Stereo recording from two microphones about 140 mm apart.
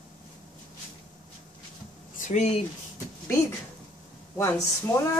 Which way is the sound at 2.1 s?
55° left (ahead or behind).